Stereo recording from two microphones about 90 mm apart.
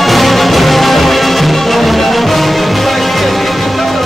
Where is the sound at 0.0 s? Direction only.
Centre (ahead or behind).